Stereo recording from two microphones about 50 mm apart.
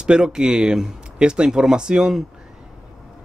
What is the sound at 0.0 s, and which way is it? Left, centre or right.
Speech, centre.